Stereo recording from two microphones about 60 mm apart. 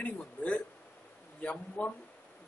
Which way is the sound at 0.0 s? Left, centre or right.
Left.